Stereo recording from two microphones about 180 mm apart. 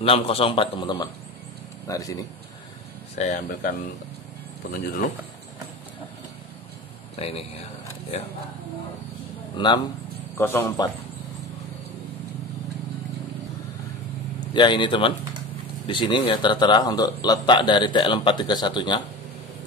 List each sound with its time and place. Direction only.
0.0 s a man's voice: 30° left (ahead or behind)
3.2 s speech: 50° left (ahead or behind)
7.2 s a man's voice: 35° left (ahead or behind)
9.6 s a man's voice: 25° left (ahead or behind)
10.3 s speech: 15° left (ahead or behind)
14.5 s a man's voice: 25° left (ahead or behind)